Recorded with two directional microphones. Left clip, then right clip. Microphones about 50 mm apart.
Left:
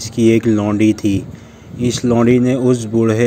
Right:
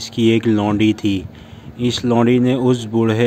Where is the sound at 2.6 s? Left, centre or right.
Centre.